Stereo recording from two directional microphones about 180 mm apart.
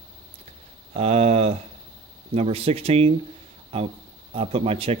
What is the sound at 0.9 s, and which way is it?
Speech, 35° right (ahead or behind).